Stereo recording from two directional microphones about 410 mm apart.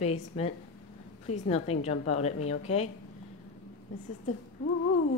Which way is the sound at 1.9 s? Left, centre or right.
Left.